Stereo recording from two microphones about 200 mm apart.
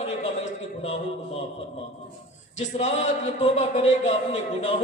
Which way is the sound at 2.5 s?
35° left (ahead or behind).